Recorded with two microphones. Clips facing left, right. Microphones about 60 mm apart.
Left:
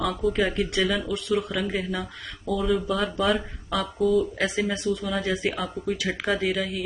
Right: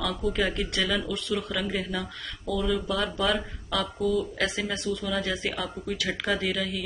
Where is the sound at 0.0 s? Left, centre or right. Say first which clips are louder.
Left 3 dB; centre.